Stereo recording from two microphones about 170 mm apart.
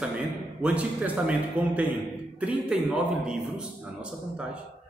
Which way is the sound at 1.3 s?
10° right (ahead or behind).